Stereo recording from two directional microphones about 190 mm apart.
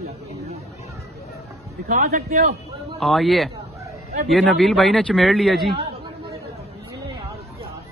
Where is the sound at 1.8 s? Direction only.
50° right (ahead or behind).